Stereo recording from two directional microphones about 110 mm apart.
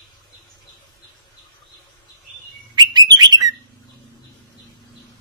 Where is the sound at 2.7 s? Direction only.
40° right (ahead or behind).